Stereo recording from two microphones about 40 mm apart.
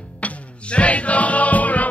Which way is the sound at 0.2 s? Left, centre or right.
Left.